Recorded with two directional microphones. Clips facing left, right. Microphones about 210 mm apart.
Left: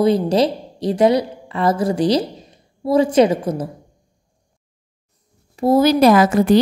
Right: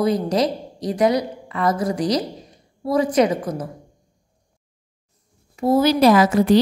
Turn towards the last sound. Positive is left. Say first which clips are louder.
# left 2 dB
turn(degrees=50)  # may be behind; listen again after turning